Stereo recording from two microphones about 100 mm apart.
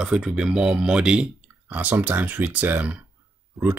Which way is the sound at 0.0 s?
10° right (ahead or behind).